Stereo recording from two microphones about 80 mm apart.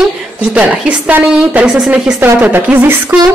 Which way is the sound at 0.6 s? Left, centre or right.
Centre.